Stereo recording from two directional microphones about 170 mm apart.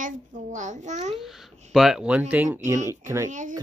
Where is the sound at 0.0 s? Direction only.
45° right (ahead or behind).